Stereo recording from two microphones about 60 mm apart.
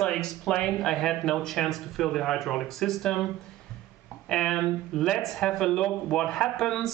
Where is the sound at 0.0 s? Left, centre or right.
Centre.